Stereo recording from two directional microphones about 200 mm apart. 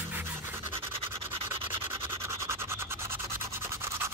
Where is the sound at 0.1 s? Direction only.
10° right (ahead or behind).